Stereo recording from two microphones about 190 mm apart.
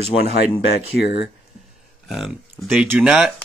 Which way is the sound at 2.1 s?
Centre (ahead or behind).